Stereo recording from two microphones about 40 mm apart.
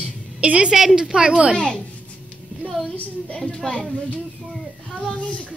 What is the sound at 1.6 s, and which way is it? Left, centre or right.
Speech, left.